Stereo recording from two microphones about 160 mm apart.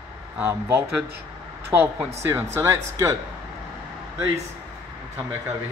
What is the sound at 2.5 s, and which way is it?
Speech, 15° right (ahead or behind).